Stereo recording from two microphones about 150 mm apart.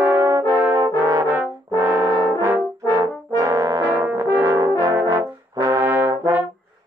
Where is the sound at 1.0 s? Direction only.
25° right (ahead or behind).